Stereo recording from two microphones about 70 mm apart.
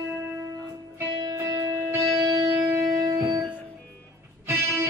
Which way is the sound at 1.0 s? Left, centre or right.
Right.